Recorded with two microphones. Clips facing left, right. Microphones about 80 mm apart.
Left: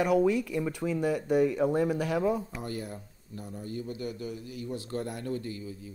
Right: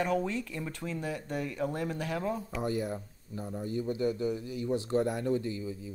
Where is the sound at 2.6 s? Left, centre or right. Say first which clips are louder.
Right 5 dB; right.